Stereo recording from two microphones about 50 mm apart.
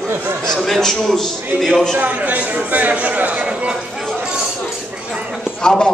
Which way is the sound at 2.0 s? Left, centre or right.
Right.